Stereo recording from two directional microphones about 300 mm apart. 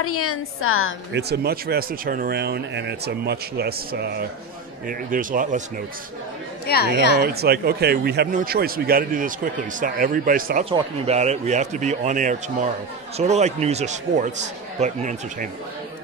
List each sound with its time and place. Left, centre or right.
0.0 s a woman's voice: left
1.1 s speech: right
6.6 s speech: left
7.2 s speech: right